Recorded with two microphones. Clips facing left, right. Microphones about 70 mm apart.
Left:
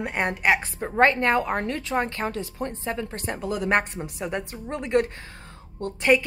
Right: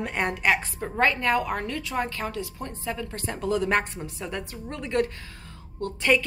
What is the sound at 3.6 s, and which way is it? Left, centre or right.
A woman's voice, left.